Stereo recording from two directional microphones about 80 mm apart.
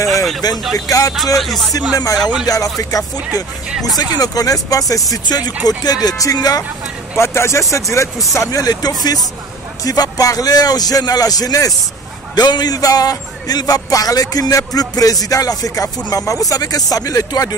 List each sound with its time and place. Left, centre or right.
0.1 s vehicle: centre
0.7 s speech: left
1.1 s speech: centre
2.4 s speech: left
7.2 s speech: left
12.4 s speech: left